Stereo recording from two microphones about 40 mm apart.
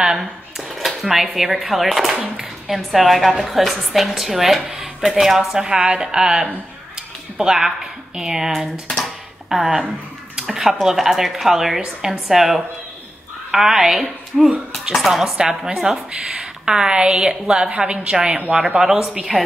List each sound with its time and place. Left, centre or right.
0.0 s dishes: centre
0.7 s a woman's voice: centre
5.6 s a woman's voice: right
9.5 s a sound: centre
10.5 s a woman's voice: centre